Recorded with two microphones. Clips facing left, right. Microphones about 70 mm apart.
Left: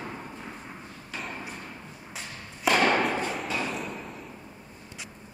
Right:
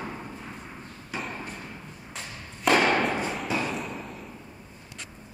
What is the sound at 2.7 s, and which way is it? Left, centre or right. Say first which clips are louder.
Thump: right 2 dB; centre.